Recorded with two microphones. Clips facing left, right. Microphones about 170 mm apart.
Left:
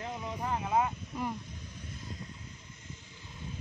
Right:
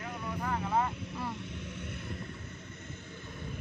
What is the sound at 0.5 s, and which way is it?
Speech, 15° left (ahead or behind).